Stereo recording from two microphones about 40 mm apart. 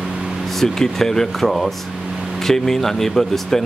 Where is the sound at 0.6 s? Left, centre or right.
Centre.